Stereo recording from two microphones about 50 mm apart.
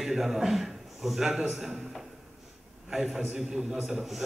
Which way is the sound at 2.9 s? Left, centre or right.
Centre.